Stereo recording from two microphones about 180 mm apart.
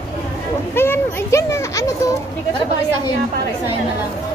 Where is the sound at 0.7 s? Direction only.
15° left (ahead or behind).